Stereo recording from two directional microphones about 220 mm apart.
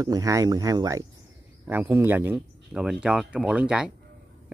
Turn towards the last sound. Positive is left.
turn(degrees=-5)  # may be behind; listen again after turning